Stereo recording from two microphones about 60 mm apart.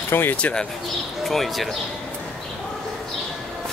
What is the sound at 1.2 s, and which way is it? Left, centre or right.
Speech, centre.